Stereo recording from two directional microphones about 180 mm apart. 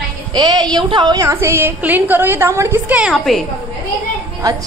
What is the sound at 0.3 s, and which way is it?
A woman's voice, 20° right (ahead or behind).